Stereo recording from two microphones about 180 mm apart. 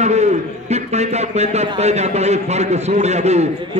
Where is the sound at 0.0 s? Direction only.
40° right (ahead or behind).